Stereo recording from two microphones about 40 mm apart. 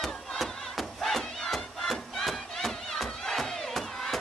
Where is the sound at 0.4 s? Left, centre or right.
Centre.